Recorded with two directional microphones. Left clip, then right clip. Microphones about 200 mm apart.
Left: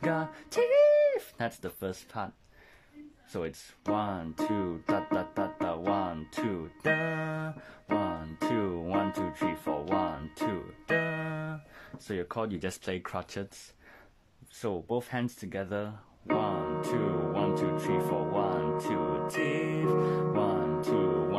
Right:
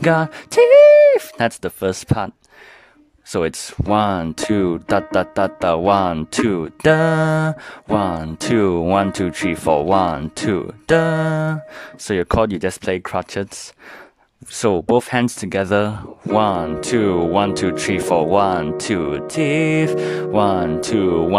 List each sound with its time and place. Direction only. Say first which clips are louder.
0.0 s speech: right 15 dB; 45° right (ahead or behind)
14.6 s speech: right 17 dB; 50° right (ahead or behind)